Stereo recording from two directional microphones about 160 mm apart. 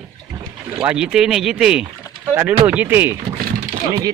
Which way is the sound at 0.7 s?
5° right (ahead or behind).